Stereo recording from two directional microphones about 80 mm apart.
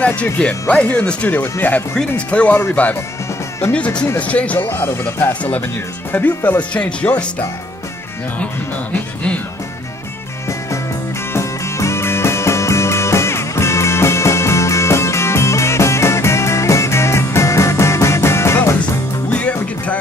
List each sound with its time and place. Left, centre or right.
0.0 s speech: centre
4.6 s speech: left
8.9 s music: centre
11.3 s music: left
19.3 s music: centre